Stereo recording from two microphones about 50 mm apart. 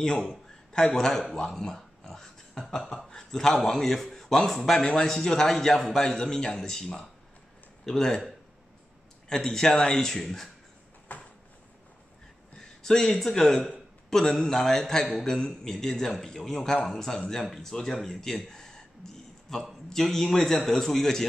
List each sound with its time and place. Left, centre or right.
0.0 s speech: centre
1.8 s a sound: centre
3.0 s speech: centre
9.3 s speech: centre
11.1 s a sound: left
12.5 s a man's voice: centre